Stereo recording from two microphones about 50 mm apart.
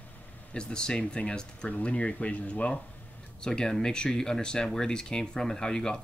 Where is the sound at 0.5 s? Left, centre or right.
Centre.